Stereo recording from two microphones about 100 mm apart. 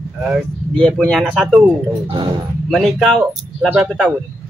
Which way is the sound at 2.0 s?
55° right (ahead or behind).